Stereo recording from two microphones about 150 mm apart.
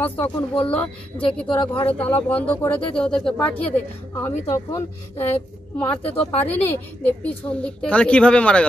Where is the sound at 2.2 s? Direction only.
10° left (ahead or behind).